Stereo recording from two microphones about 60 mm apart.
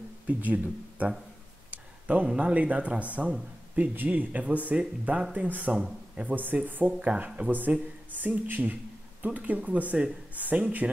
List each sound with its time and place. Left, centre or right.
0.3 s a man's voice: right